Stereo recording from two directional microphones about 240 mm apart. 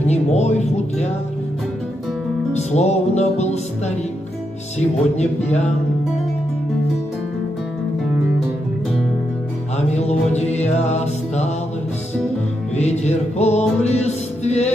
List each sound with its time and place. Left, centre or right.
0.0 s speech: left
2.5 s music: left
4.7 s speech: left
9.8 s music: left
12.7 s music: left